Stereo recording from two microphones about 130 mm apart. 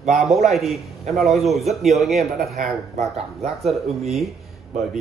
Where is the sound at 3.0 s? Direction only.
55° right (ahead or behind).